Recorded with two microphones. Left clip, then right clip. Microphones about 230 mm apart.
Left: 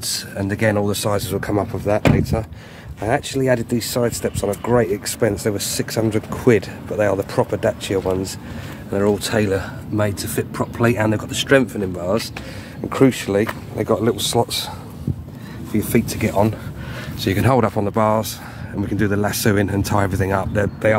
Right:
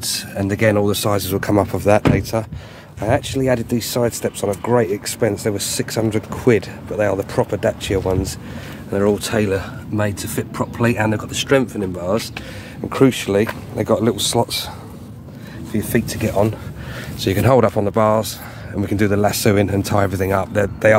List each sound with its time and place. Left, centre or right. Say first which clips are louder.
0.0 s speech: right 2 dB; centre
3.0 s speech: right 1 dB; centre
15.7 s speech: left 1 dB; centre